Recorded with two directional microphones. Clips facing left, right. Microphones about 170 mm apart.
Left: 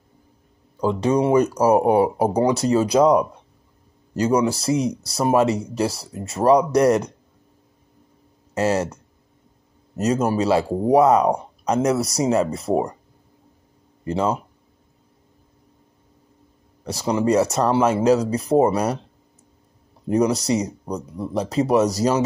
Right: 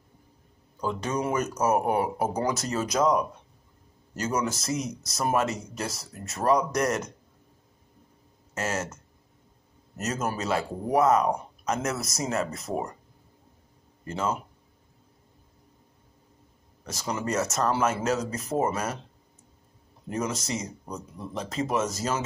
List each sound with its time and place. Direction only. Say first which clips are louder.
0.7 s speech: left 10 dB; 35° left (ahead or behind)
8.5 s speech: left 10 dB; 35° left (ahead or behind)
14.0 s speech: left 7 dB; 35° left (ahead or behind)
16.8 s speech: left 10 dB; 35° left (ahead or behind)
20.1 s speech: left 11 dB; 35° left (ahead or behind)